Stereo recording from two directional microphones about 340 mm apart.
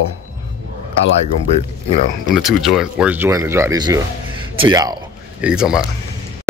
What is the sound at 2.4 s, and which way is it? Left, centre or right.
Speech, centre.